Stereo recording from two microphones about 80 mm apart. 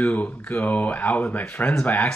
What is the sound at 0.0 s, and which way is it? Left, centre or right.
Speech, centre.